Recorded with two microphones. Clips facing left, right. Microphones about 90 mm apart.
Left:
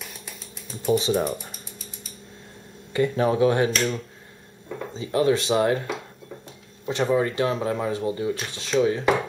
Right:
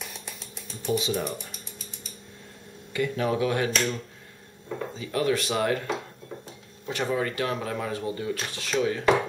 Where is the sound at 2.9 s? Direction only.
30° left (ahead or behind).